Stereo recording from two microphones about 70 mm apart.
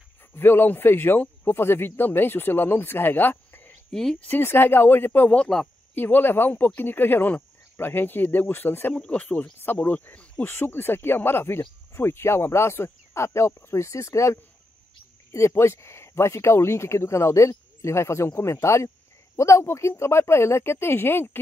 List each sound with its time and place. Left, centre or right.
0.4 s speech: left
3.9 s speech: centre
4.2 s speech: left
5.3 s speech: centre
5.9 s speech: left
8.9 s speech: centre; by 21.4 s left